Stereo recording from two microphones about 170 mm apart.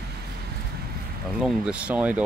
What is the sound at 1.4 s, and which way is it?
Speech, 5° right (ahead or behind).